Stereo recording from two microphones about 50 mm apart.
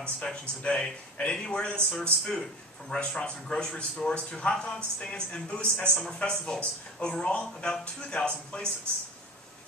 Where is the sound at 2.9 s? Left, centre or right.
Centre.